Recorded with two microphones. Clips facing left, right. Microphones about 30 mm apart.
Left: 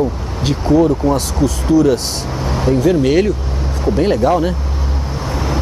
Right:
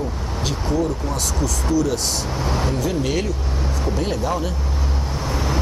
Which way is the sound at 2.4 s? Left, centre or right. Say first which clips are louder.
Left 8 dB; centre.